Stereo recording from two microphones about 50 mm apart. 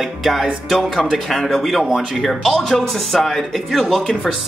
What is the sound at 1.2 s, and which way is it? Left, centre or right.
Speech, centre.